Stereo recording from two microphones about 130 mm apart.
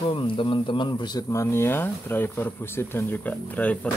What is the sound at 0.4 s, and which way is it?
Speech, 40° left (ahead or behind).